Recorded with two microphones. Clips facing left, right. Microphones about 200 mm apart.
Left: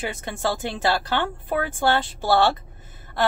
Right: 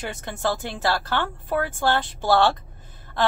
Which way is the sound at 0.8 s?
15° left (ahead or behind).